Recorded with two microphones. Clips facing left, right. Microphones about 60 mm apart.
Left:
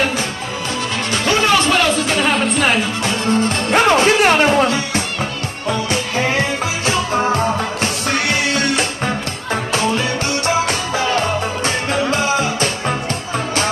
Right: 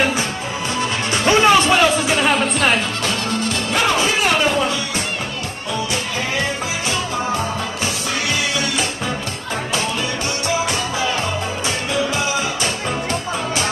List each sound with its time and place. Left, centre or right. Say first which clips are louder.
1.1 s music: right 2 dB; centre
2.2 s music: left 2 dB; centre
3.7 s music: left 6 dB; left
7.8 s music: left 4 dB; left
10.4 s music: left 2 dB; left
11.6 s music: left 1 dB; left